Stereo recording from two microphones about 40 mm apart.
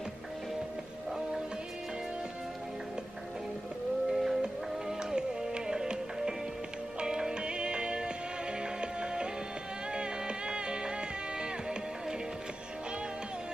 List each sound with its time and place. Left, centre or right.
4.1 s music: centre